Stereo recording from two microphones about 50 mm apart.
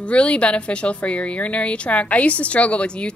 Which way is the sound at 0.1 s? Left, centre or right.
Left.